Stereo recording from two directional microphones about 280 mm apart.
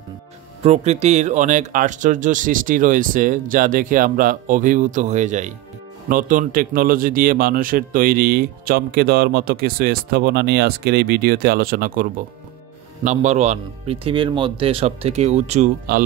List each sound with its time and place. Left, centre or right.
0.6 s a man's voice: right